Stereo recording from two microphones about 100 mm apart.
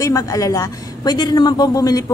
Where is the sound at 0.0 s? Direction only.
35° left (ahead or behind).